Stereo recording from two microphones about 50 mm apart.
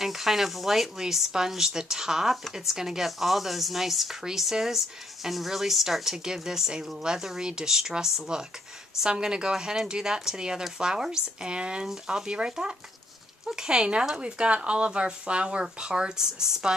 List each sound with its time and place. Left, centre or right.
0.0 s a woman's voice: centre
11.8 s a woman's voice: centre